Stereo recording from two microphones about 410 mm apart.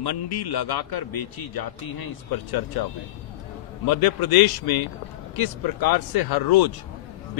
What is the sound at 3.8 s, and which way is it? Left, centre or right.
Speech, left.